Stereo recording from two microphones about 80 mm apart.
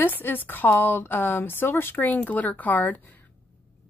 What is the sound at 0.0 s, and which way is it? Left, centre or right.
Speech, left.